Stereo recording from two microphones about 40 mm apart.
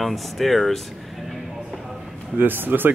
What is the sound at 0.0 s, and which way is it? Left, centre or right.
Speech, centre.